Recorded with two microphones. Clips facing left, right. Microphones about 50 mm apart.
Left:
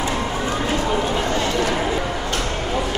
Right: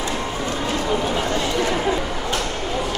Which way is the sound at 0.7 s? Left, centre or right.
Centre.